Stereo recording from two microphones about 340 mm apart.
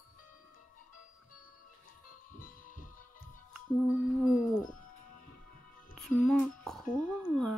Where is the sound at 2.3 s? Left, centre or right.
Left.